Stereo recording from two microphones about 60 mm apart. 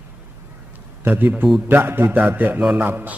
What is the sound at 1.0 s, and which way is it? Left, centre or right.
A man's voice, right.